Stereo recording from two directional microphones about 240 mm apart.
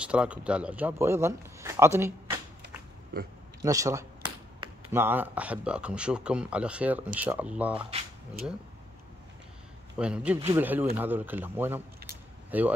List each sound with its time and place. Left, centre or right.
0.0 s a man's voice: centre
3.1 s speech: right
3.6 s speech: centre
9.9 s a man's voice: centre